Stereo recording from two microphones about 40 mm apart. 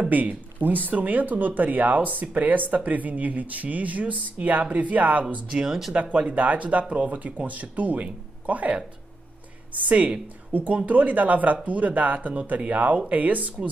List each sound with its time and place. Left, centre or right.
0.1 s speech: right
5.7 s speech: centre
6.1 s speech: right